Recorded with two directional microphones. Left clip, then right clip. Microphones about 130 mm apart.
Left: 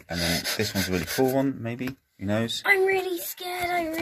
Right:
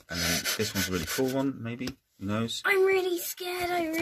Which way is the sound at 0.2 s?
45° right (ahead or behind).